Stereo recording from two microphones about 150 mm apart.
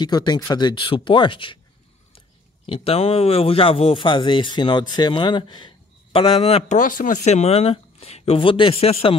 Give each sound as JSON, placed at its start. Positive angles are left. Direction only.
{"t": 0.0, "sound": "speech", "side_deg": 30}
{"t": 6.8, "sound": "speech", "side_deg": 65}